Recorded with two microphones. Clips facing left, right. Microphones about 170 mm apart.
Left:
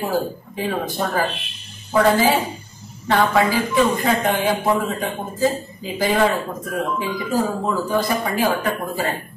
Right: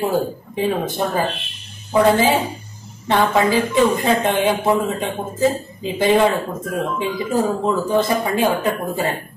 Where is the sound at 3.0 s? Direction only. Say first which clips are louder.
Right 1 dB; 20° right (ahead or behind).